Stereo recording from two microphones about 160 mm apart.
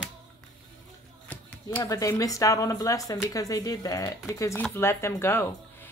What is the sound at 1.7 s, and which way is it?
Speech, 20° left (ahead or behind).